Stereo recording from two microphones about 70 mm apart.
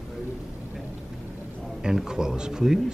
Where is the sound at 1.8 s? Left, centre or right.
Centre.